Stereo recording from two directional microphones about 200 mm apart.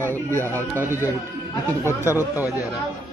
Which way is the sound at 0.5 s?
10° right (ahead or behind).